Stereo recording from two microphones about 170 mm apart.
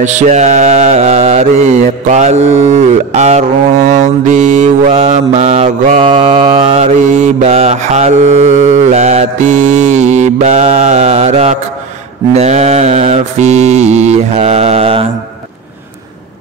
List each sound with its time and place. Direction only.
0.0 s mantra: 45° right (ahead or behind)